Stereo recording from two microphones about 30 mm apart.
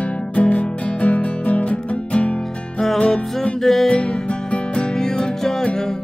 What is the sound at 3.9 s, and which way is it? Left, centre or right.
Music, left.